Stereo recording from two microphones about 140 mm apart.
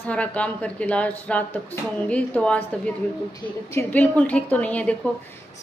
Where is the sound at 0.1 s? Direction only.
10° left (ahead or behind).